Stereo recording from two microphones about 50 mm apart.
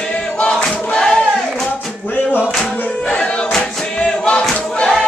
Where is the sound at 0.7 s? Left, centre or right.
Centre.